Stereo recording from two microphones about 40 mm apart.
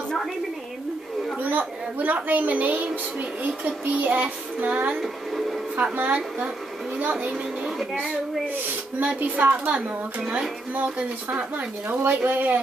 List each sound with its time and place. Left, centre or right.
1.4 s a woman's voice: right
5.0 s a sound: centre
5.9 s a woman's voice: right
9.0 s a woman's voice: right
11.2 s a woman's voice: right